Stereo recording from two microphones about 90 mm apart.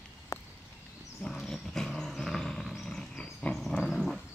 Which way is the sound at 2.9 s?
5° left (ahead or behind).